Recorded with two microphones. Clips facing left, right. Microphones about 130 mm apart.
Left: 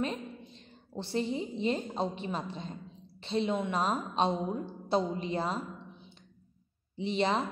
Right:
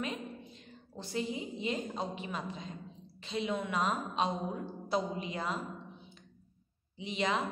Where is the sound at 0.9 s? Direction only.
30° left (ahead or behind).